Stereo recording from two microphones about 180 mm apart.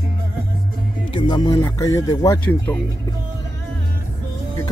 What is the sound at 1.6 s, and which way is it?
Speech, 15° left (ahead or behind).